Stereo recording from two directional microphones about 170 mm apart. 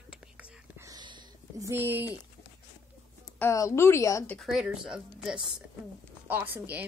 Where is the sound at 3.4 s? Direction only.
15° left (ahead or behind).